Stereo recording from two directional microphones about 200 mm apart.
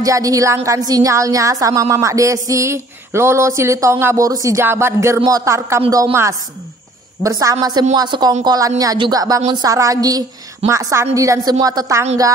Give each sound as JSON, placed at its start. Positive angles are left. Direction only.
{"t": 0.0, "sound": "a woman's voice", "side_deg": -15}